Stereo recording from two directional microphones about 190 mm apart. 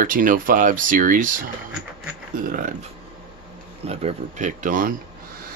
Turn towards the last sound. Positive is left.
turn(degrees=-45)  # may be behind; listen again after turning